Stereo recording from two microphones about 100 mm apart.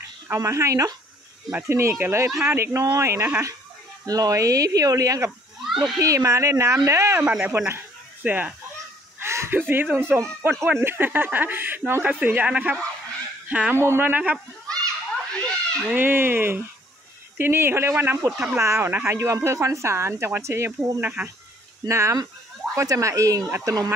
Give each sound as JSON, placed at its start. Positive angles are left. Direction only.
{"t": 0.3, "sound": "speech", "side_deg": -30}
{"t": 5.7, "sound": "a child's voice", "side_deg": -5}
{"t": 5.9, "sound": "speech", "side_deg": -35}
{"t": 9.2, "sound": "a sound", "side_deg": -25}
{"t": 10.1, "sound": "speech", "side_deg": -20}
{"t": 15.3, "sound": "cat", "side_deg": 10}
{"t": 15.8, "sound": "speech", "side_deg": -15}
{"t": 18.3, "sound": "speech", "side_deg": -10}
{"t": 18.6, "sound": "speech", "side_deg": -30}
{"t": 21.0, "sound": "speech", "side_deg": -15}
{"t": 21.8, "sound": "speech", "side_deg": -30}